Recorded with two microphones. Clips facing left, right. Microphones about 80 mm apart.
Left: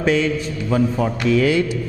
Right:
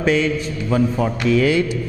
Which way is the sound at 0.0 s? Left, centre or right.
Centre.